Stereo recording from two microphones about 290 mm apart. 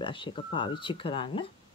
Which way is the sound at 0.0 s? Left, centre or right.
Centre.